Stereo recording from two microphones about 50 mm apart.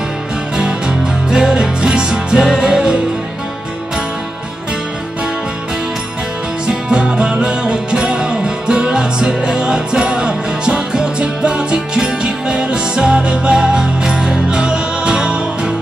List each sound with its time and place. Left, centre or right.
0.6 s music: centre
6.7 s music: centre